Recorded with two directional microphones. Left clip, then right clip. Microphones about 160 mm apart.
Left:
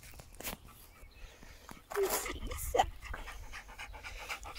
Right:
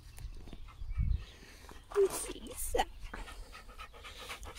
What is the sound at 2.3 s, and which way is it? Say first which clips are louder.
Dog: left 1 dB; 25° right (ahead or behind).